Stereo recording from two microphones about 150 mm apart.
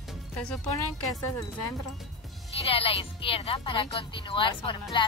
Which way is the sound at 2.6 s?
40° left (ahead or behind).